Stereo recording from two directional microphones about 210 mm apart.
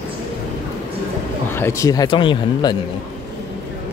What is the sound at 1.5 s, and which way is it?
A man's voice, 10° left (ahead or behind).